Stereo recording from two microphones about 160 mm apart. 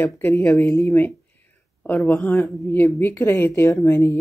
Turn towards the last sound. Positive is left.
turn(degrees=15)  # may be behind; listen again after turning